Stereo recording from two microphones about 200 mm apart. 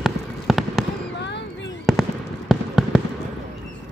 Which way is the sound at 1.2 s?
60° left (ahead or behind).